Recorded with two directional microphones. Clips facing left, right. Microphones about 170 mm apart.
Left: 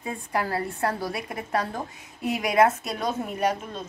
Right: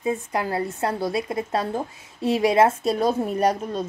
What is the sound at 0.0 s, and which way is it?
A woman's voice, 20° right (ahead or behind).